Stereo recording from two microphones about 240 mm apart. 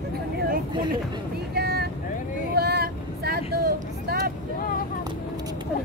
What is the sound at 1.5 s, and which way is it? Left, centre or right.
Vehicle, right.